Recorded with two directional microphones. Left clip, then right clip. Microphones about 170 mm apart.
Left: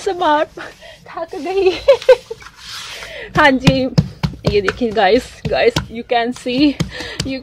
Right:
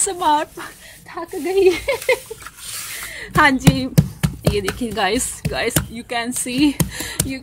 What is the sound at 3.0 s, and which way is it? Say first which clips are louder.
Speech: left 3 dB; 20° left (ahead or behind).